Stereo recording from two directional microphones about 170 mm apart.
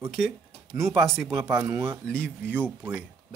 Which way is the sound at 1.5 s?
10° right (ahead or behind).